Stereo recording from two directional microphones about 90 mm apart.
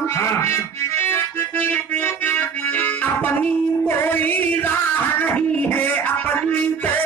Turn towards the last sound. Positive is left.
turn(degrees=20)  # may be behind; listen again after turning